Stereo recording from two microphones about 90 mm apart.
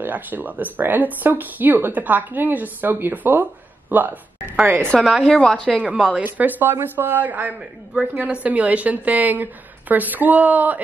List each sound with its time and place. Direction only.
0.0 s speech: 20° right (ahead or behind)
5.0 s speech: centre (ahead or behind)
5.3 s speech: 10° left (ahead or behind)
6.1 s speech: 15° right (ahead or behind)